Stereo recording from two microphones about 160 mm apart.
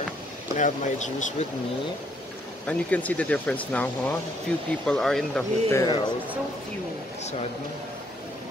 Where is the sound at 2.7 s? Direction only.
10° left (ahead or behind).